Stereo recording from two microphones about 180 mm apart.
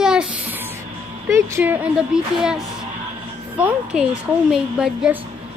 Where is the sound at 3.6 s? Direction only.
5° right (ahead or behind).